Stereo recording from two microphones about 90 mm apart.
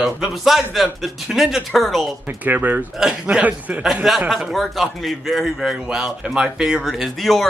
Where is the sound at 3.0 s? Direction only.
5° right (ahead or behind).